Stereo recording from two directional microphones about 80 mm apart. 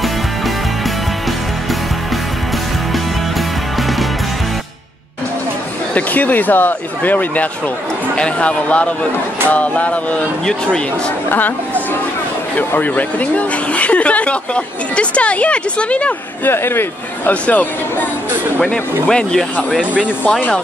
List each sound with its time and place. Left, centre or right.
5.9 s speech: left
11.2 s speech: left
12.5 s speech: left
16.4 s speech: left; by 19.4 s centre
19.8 s speech: centre